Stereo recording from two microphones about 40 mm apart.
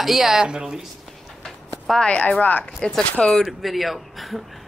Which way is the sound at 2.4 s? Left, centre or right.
Left.